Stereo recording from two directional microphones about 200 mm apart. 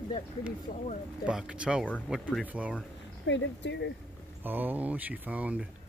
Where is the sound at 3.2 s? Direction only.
65° left (ahead or behind).